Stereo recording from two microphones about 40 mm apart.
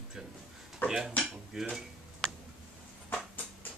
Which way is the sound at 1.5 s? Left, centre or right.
Centre.